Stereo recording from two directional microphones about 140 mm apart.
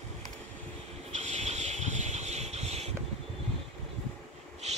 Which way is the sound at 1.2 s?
55° right (ahead or behind).